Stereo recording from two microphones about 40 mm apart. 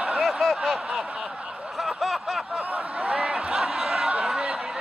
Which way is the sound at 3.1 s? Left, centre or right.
Right.